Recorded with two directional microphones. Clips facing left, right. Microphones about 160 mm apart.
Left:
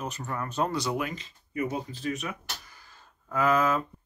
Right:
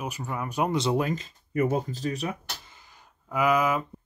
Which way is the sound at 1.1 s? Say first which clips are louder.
Right 8 dB; 50° right (ahead or behind).